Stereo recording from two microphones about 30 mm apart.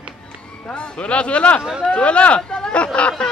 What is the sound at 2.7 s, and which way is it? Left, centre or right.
Speech, left.